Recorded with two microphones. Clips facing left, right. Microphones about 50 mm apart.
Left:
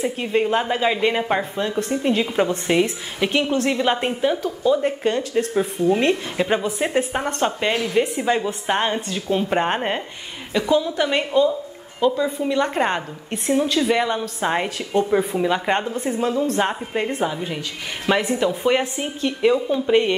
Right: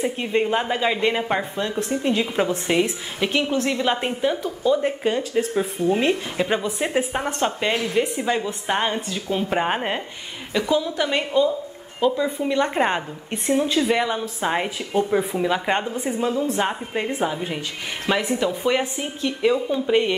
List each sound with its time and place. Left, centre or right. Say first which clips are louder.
0.0 s speech: left 1 dB; centre
3.3 s a woman's voice: left 2 dB; centre
12.0 s speech: left 1 dB; centre
18.1 s speech: left 2 dB; centre